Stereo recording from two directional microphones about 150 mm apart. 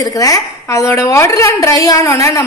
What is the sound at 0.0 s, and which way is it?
A woman's voice, 25° left (ahead or behind).